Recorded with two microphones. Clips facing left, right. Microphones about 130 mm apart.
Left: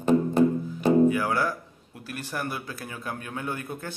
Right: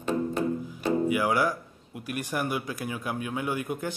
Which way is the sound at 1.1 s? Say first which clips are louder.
Even; 15° right (ahead or behind).